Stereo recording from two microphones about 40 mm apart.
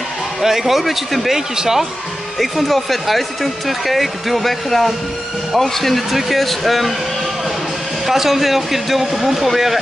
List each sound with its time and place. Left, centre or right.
0.4 s speech: centre
2.3 s speech: centre
8.1 s speech: centre